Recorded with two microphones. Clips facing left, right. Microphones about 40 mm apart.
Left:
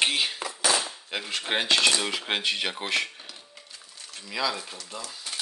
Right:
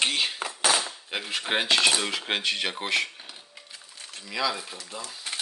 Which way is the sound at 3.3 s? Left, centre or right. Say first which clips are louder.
Right 1 dB; right.